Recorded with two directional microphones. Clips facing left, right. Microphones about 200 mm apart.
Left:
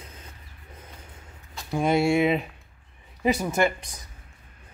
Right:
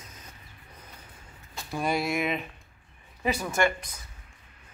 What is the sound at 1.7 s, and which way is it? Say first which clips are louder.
Speech: left 7 dB; 25° left (ahead or behind).